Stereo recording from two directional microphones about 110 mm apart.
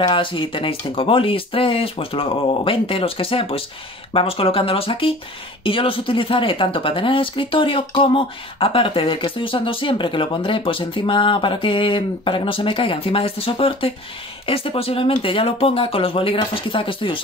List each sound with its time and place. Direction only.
0.0 s speech: 50° left (ahead or behind)